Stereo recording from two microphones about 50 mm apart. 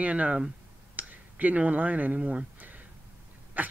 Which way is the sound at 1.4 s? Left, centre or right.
Right.